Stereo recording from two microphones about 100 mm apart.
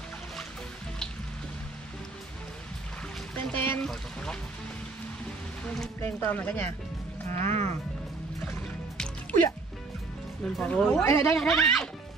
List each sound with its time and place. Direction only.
3.5 s pour: 20° left (ahead or behind)
3.8 s pour: 5° left (ahead or behind)
5.9 s speech: 25° left (ahead or behind)
8.9 s music: 10° left (ahead or behind)
10.4 s speech: 10° left (ahead or behind)
11.1 s speech: 25° left (ahead or behind)
11.3 s speech: centre (ahead or behind)